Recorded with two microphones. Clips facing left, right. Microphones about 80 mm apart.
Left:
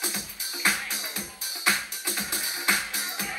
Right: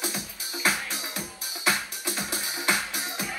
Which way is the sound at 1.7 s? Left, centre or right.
Centre.